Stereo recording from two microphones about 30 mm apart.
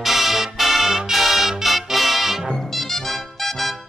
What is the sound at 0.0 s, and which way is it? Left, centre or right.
Music, centre.